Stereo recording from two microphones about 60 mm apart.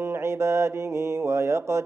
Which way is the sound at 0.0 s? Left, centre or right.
Right.